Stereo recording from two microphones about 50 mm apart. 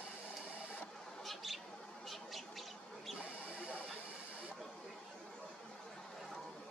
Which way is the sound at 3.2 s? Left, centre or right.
Left.